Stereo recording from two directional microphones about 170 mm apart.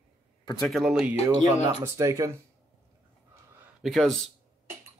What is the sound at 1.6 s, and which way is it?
Speech, 20° right (ahead or behind).